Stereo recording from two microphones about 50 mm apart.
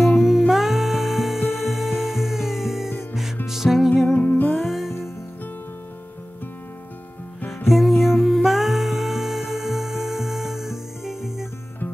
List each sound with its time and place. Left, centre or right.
0.0 s music: centre
4.1 s music: left
4.6 s music: centre
7.4 s music: centre